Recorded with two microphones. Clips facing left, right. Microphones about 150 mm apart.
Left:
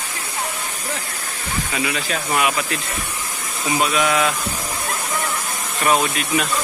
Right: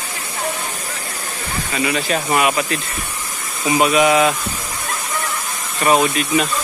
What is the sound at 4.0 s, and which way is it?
Speech, 10° right (ahead or behind).